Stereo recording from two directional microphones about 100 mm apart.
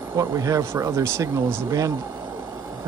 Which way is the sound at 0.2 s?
30° right (ahead or behind).